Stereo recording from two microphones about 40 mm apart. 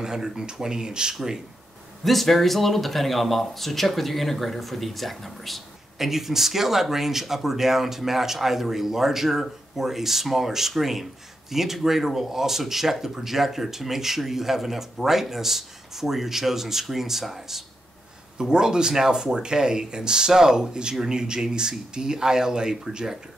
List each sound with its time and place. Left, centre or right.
0.0 s speech: centre
2.0 s speech: centre
18.4 s speech: centre